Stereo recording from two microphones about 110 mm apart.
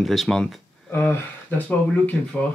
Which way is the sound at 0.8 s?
20° left (ahead or behind).